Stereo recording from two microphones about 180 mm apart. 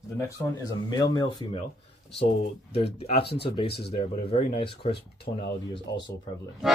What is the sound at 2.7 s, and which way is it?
Speech, 35° left (ahead or behind).